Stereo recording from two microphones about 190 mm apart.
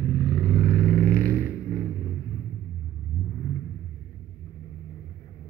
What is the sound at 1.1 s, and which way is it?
Vehicle, 10° left (ahead or behind).